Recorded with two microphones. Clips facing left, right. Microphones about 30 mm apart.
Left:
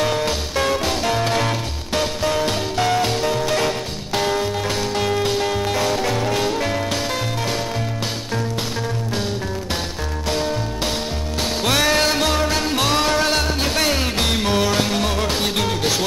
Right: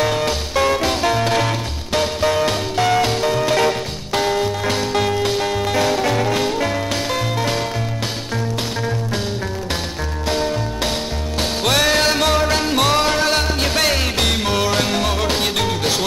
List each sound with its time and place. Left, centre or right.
0.0 s music: centre
4.6 s music: centre
11.9 s music: centre
13.8 s music: right
14.3 s music: centre